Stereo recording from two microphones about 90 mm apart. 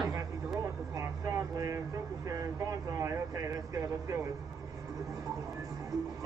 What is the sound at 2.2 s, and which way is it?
Speech, 40° right (ahead or behind).